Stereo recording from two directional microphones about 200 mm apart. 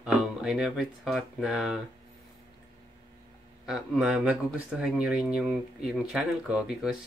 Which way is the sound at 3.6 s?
5° right (ahead or behind).